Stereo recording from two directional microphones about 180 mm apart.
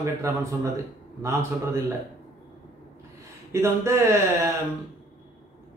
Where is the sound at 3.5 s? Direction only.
15° right (ahead or behind).